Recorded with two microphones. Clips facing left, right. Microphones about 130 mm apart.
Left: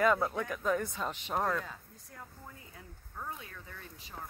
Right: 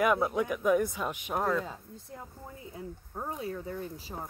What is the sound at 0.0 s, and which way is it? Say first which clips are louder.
Speech: right 2 dB; 15° right (ahead or behind).